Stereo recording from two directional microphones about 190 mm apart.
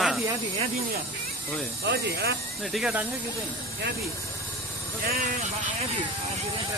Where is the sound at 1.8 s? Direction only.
60° right (ahead or behind).